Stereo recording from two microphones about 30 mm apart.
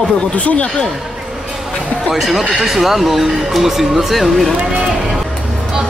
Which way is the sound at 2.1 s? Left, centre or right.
Centre.